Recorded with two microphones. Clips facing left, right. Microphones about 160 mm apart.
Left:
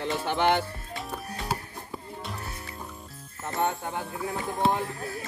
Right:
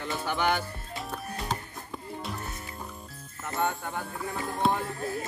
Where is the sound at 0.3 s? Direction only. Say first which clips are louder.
Left 3 dB; 25° left (ahead or behind).